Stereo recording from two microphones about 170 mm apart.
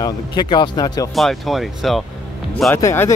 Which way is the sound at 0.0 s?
25° left (ahead or behind).